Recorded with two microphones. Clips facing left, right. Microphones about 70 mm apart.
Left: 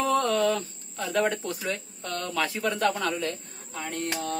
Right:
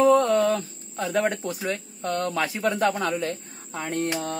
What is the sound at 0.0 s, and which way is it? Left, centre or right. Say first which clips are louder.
Speech: right 6 dB; right.